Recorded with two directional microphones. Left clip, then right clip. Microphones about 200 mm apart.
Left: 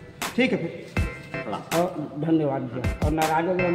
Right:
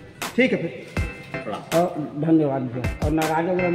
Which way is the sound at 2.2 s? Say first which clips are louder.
Right 4 dB; 40° right (ahead or behind).